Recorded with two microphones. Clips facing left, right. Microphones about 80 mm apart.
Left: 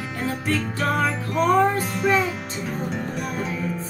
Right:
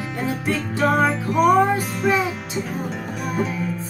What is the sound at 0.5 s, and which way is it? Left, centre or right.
Music, centre.